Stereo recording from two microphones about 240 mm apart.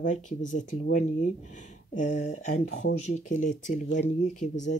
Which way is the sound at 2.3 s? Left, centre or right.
Left.